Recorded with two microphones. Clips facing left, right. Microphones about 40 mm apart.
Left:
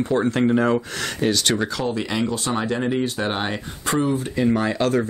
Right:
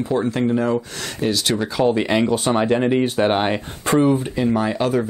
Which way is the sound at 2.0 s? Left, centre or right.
Right.